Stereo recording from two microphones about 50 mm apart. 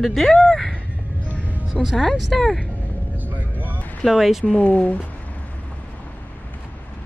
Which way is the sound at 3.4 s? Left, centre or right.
Right.